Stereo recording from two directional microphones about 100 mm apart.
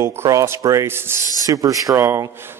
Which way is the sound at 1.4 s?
35° right (ahead or behind).